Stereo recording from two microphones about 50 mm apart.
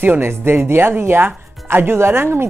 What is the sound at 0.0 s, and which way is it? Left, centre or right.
Speech, right.